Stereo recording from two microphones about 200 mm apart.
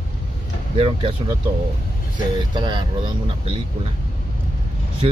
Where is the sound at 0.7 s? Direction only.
25° right (ahead or behind).